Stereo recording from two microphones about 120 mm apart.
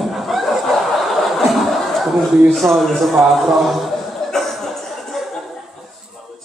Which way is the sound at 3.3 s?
Centre (ahead or behind).